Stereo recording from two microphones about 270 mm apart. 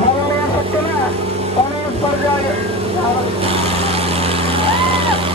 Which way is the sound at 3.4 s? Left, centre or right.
Right.